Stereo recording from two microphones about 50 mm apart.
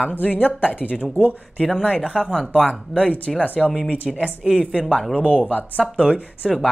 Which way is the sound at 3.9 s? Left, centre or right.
Right.